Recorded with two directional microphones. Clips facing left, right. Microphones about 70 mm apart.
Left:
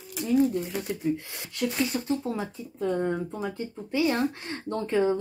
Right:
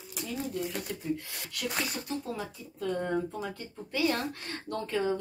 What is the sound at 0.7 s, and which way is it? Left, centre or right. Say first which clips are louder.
Speech: left 5 dB; left.